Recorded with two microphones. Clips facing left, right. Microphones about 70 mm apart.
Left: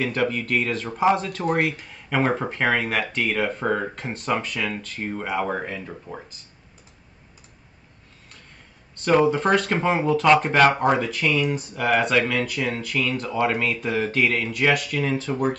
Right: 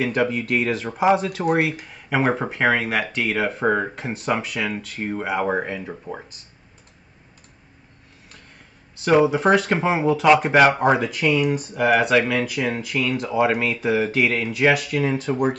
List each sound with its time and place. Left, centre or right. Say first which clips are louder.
0.0 s speech: right 2 dB; centre
9.0 s speech: right 2 dB; centre